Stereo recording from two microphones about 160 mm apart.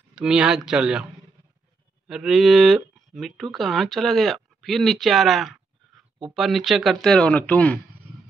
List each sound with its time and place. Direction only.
0.1 s speech: 5° right (ahead or behind)
2.0 s speech: 5° right (ahead or behind)